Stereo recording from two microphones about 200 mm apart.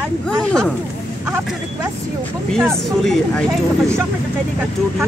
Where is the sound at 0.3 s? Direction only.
5° left (ahead or behind).